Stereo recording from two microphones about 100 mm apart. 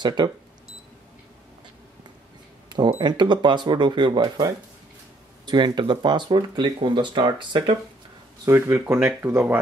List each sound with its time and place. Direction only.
0.0 s speech: 50° right (ahead or behind)
2.7 s speech: 50° right (ahead or behind)
8.5 s speech: 25° right (ahead or behind)